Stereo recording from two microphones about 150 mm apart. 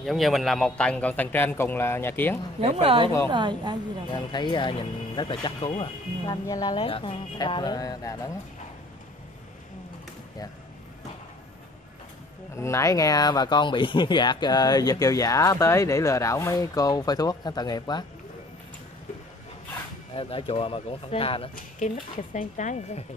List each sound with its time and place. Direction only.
0.0 s a man's voice: centre (ahead or behind)
2.6 s a woman's voice: 40° right (ahead or behind)
4.1 s speech: 30° left (ahead or behind)
6.8 s speech: 40° left (ahead or behind)
12.5 s speech: 20° left (ahead or behind)
20.2 s speech: 35° left (ahead or behind)
22.3 s speech: 55° left (ahead or behind)